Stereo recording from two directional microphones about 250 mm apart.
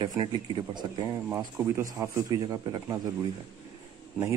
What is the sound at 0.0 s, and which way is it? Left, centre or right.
Speech, centre.